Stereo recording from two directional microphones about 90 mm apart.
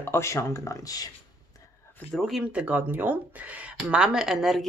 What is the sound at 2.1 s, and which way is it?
Speech, centre (ahead or behind).